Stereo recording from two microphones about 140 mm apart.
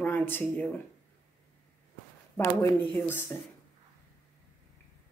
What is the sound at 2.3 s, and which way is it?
Speech, 15° left (ahead or behind).